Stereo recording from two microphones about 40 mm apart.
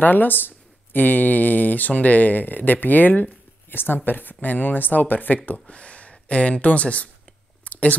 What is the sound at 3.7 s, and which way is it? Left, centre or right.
Speech, left.